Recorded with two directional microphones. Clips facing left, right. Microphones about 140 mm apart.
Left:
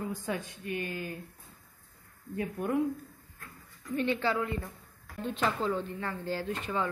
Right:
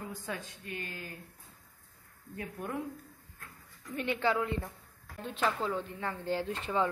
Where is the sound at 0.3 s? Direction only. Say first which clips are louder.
Left 4 dB; 15° left (ahead or behind).